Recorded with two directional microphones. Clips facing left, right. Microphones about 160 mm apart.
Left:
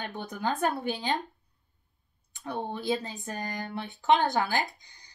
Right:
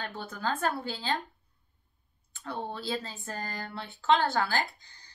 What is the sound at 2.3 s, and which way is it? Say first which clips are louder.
Speech: left 2 dB; 15° left (ahead or behind).